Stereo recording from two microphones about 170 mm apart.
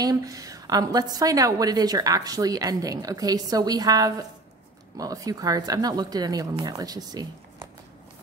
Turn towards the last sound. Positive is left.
turn(degrees=-25)  # may be behind; listen again after turning